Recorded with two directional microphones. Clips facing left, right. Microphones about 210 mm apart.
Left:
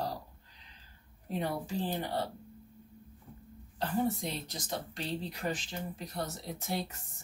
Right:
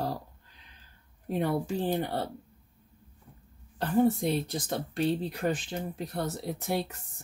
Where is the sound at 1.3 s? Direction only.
55° right (ahead or behind).